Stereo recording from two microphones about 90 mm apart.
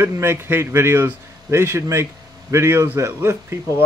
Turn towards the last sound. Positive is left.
turn(degrees=-30)  # may be behind; listen again after turning